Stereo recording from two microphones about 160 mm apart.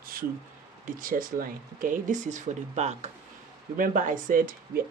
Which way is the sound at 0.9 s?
60° right (ahead or behind).